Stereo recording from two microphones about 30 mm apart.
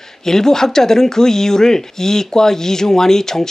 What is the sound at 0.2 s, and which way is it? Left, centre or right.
Speech, centre.